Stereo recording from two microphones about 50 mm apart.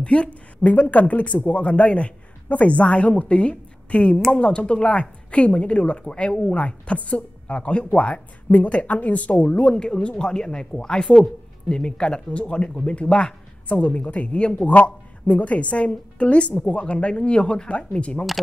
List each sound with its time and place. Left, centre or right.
0.0 s speech: left